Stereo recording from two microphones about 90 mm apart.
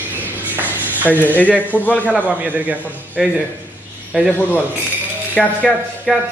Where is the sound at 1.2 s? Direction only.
20° left (ahead or behind).